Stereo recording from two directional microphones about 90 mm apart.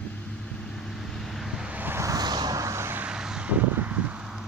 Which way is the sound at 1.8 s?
25° right (ahead or behind).